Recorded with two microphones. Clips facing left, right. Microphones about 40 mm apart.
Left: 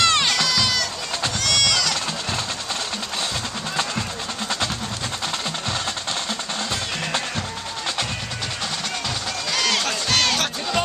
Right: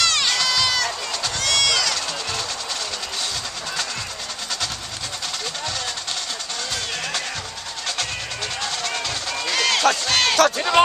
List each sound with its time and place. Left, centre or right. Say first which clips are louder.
0.0 s crowd: left 2 dB; left
0.5 s run: right 1 dB; centre
1.4 s a sound: right 1 dB; centre
9.5 s crowd: right 4 dB; centre